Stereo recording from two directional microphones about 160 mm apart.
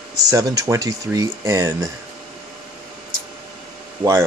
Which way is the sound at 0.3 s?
20° right (ahead or behind).